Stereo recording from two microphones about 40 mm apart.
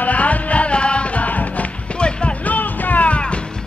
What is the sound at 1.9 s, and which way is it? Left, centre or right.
Music, left.